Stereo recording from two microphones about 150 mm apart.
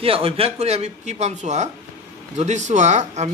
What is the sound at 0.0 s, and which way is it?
Speech, 40° right (ahead or behind).